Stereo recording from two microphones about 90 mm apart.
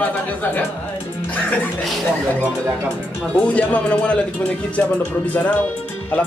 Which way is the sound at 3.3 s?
15° left (ahead or behind).